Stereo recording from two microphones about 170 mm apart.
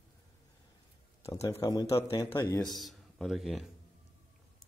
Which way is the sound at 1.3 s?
20° left (ahead or behind).